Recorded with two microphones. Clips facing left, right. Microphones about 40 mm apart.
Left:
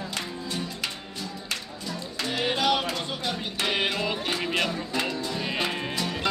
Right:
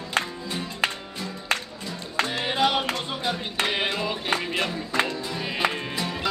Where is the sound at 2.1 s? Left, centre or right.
Right.